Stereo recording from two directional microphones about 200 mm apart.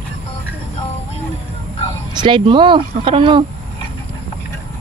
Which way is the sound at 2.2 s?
25° right (ahead or behind).